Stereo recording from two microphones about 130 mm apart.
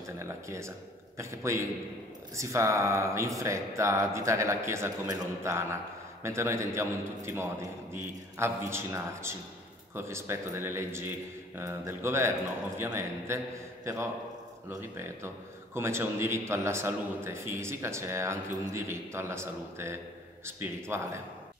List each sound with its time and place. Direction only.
0.2 s a man's voice: 20° right (ahead or behind)
14.7 s a man's voice: 20° right (ahead or behind)